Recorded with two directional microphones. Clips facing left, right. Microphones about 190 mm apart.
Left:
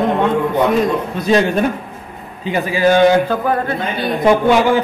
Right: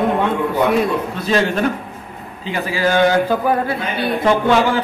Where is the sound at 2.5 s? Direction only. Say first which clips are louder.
Left 4 dB; 20° left (ahead or behind).